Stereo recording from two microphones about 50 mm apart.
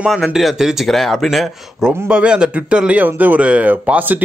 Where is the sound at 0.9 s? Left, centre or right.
Centre.